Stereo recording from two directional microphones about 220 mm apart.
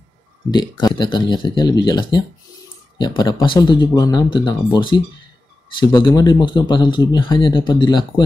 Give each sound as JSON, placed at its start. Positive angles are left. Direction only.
{"t": 0.5, "sound": "speech", "side_deg": 20}